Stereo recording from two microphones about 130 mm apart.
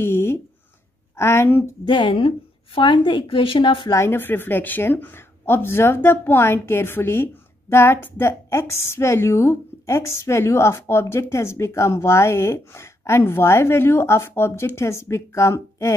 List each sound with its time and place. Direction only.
0.0 s a sound: 20° left (ahead or behind)
1.1 s a woman's voice: 20° left (ahead or behind)
1.9 s a woman's voice: 40° left (ahead or behind)
3.9 s a woman's voice: 20° left (ahead or behind)